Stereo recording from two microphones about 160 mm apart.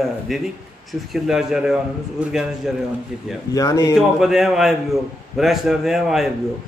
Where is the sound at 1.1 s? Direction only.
5° right (ahead or behind).